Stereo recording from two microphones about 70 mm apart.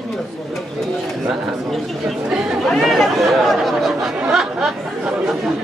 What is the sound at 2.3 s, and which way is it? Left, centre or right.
Speech, centre.